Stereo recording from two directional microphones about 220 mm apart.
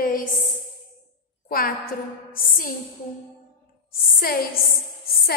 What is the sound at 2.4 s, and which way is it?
Speech, 40° left (ahead or behind).